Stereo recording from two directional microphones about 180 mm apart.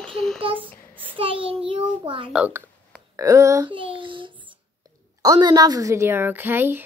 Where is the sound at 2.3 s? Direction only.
5° right (ahead or behind).